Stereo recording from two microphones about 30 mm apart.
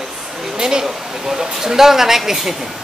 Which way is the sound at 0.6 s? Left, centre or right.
Right.